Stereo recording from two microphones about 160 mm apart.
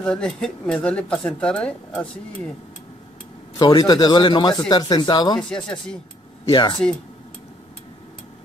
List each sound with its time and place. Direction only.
0.0 s speech: 5° left (ahead or behind)
3.5 s speech: 25° left (ahead or behind)
5.5 s speech: 5° left (ahead or behind)
6.5 s speech: 30° left (ahead or behind)